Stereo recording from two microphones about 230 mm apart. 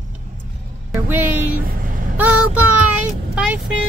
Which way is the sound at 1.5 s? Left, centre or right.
Right.